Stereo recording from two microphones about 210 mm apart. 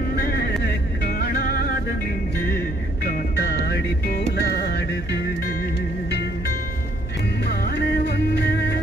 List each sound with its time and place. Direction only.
0.1 s music: 50° left (ahead or behind)
3.1 s music: 50° left (ahead or behind)
7.4 s music: 50° left (ahead or behind)